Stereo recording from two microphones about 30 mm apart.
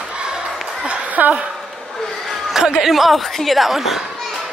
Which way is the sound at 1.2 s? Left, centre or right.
Right.